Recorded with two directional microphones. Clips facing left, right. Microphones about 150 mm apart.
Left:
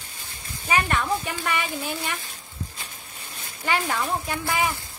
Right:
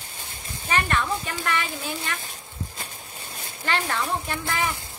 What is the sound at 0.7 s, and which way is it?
Speech, 10° left (ahead or behind).